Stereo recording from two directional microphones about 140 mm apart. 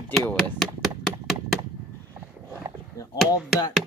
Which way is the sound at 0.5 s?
Centre (ahead or behind).